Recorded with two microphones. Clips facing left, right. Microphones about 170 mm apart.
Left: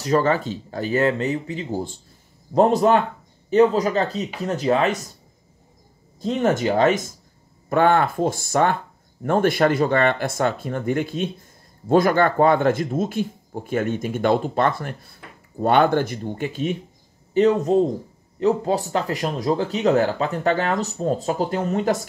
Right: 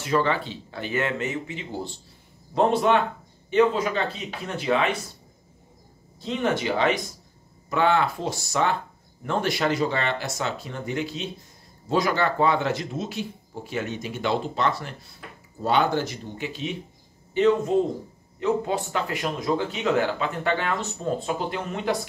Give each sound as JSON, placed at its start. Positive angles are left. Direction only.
{"t": 0.0, "sound": "speech", "side_deg": 40}
{"t": 6.2, "sound": "speech", "side_deg": 45}
{"t": 17.3, "sound": "speech", "side_deg": 40}